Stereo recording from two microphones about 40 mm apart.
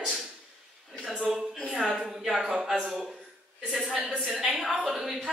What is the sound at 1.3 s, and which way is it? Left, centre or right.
A woman's voice, centre.